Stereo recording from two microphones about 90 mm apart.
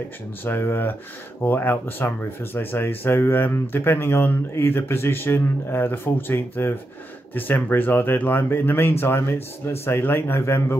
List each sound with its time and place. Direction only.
0.4 s speech: 25° left (ahead or behind)